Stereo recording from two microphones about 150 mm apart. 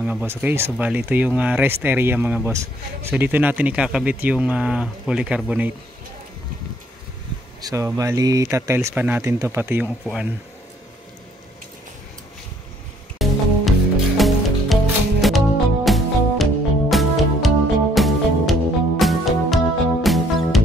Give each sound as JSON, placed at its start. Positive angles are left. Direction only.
{"t": 0.0, "sound": "speech", "side_deg": -10}
{"t": 7.6, "sound": "speech", "side_deg": -20}
{"t": 13.2, "sound": "music", "side_deg": 0}